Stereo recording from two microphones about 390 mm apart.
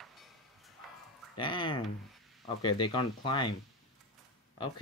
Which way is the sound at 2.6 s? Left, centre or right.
Centre.